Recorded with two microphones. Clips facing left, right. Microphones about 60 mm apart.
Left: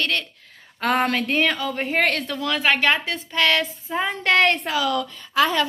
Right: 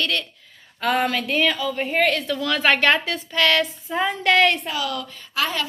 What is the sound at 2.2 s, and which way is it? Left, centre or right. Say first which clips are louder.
Speech: right 1 dB; left.